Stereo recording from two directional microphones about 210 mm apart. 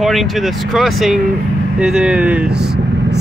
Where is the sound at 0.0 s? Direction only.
Centre (ahead or behind).